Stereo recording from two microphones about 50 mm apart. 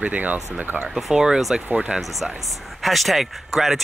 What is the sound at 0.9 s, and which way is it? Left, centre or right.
Speech, centre.